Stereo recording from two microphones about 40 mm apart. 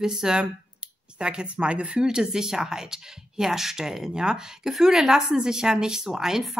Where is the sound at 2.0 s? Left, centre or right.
Centre.